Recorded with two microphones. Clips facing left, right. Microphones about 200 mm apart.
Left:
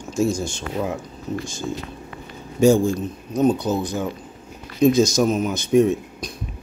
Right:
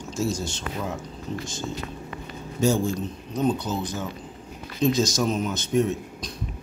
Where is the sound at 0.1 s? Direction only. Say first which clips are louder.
Left 6 dB; 10° left (ahead or behind).